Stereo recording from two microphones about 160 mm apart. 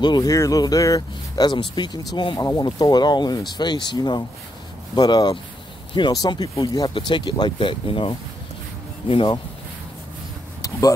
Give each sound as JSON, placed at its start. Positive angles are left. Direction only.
{"t": 0.0, "sound": "speech", "side_deg": 25}